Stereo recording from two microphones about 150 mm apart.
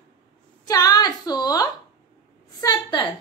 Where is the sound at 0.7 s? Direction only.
25° left (ahead or behind).